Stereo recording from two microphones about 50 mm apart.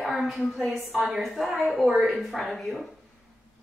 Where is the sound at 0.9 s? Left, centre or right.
Centre.